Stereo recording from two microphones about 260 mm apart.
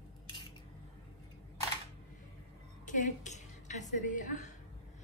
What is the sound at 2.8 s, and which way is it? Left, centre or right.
A woman's voice, left.